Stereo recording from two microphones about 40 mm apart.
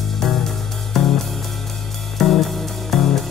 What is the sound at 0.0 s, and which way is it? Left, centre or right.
Music, centre.